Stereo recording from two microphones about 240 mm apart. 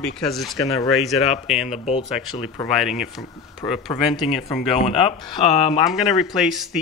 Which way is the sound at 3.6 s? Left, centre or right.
Centre.